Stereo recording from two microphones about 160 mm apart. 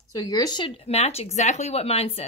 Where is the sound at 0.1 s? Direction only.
25° left (ahead or behind).